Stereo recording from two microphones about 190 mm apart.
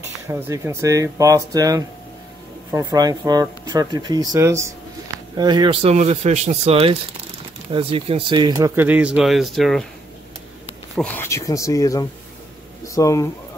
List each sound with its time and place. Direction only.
0.3 s speech: 15° right (ahead or behind); by 9.8 s centre (ahead or behind)
11.0 s speech: 10° left (ahead or behind)